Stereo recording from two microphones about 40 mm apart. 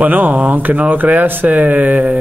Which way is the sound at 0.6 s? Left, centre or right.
Right.